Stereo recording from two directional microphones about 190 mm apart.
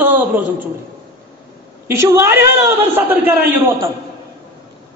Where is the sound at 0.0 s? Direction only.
10° right (ahead or behind).